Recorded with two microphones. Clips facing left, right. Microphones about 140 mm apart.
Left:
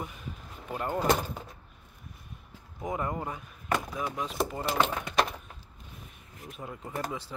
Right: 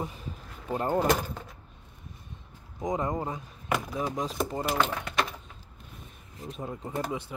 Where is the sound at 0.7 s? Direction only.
30° right (ahead or behind).